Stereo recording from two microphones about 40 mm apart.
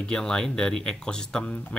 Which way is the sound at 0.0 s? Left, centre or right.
Left.